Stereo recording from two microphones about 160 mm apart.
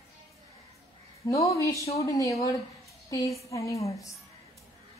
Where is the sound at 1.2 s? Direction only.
20° left (ahead or behind).